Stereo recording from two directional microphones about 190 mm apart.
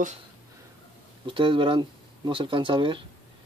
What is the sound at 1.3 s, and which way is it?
Speech, 25° right (ahead or behind).